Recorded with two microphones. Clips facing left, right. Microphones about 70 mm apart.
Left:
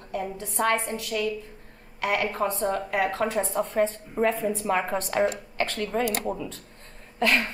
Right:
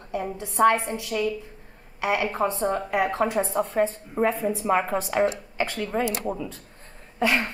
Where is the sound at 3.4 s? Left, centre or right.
Centre.